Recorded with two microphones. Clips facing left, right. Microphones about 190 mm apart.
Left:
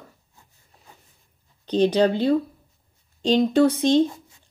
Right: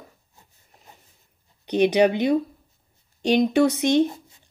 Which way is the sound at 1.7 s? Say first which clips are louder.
Right 1 dB; 15° right (ahead or behind).